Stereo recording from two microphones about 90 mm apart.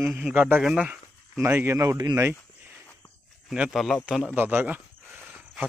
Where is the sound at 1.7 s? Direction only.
40° right (ahead or behind).